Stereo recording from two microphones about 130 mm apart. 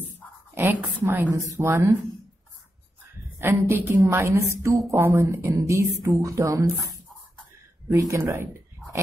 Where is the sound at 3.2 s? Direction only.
20° right (ahead or behind).